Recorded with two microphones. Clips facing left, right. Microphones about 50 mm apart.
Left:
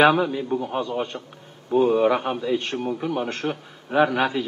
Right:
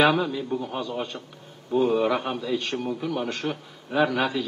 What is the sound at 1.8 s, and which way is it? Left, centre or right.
A man's voice, left.